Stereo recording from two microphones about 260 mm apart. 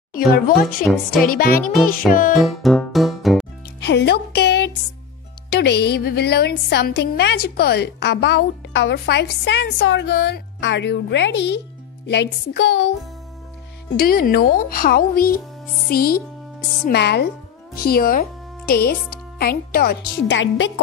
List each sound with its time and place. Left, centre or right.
0.3 s a woman's voice: left
2.3 s music: centre
3.8 s a woman's voice: left
13.9 s a woman's voice: left